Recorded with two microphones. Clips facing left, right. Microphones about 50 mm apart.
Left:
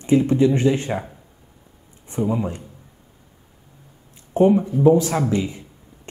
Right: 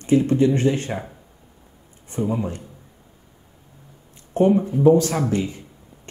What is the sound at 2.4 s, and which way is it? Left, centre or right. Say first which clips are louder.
Speech: left 1 dB; left.